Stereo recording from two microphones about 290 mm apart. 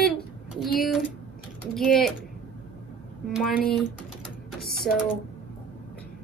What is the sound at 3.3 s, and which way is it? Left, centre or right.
Speech, centre.